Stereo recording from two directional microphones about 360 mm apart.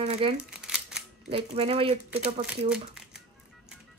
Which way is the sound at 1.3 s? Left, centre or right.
Centre.